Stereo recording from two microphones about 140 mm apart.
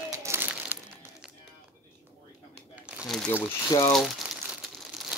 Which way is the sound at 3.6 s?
25° left (ahead or behind).